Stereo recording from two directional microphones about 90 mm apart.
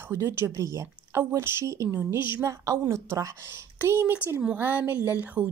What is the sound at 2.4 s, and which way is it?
A woman's voice, 35° right (ahead or behind).